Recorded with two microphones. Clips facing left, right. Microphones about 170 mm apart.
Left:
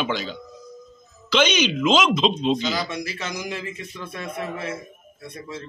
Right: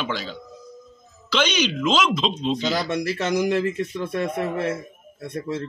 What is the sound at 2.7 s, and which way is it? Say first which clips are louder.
Speech: right 4 dB; 65° right (ahead or behind).